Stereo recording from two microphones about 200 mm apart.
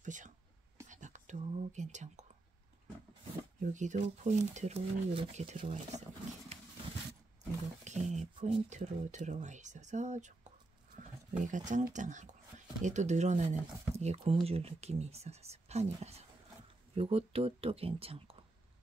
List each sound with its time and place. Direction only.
0.0 s whispering: 40° right (ahead or behind)
3.5 s speech: 40° right (ahead or behind)
7.8 s speech: 35° right (ahead or behind)
11.0 s a sound: 40° right (ahead or behind)
11.9 s speech: 40° right (ahead or behind)